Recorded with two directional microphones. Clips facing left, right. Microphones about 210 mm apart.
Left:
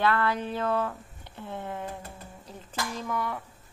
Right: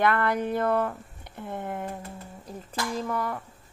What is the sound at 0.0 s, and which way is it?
A woman's voice, 15° right (ahead or behind).